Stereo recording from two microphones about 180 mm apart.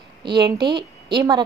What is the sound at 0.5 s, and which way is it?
Speech, 65° right (ahead or behind).